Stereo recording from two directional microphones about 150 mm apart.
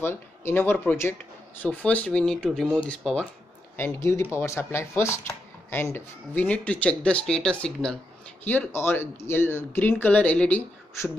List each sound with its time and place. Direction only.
0.0 s speech: 15° left (ahead or behind)
3.7 s speech: 20° left (ahead or behind)